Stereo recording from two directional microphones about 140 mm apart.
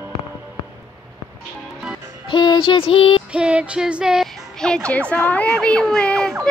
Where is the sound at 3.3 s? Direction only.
10° right (ahead or behind).